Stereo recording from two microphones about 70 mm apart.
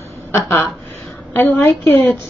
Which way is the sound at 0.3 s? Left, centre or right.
Left.